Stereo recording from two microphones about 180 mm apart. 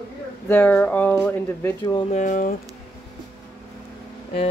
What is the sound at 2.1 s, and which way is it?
Speech, 45° left (ahead or behind).